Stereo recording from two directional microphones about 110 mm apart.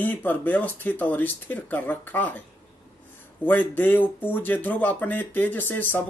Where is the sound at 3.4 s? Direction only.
15° left (ahead or behind).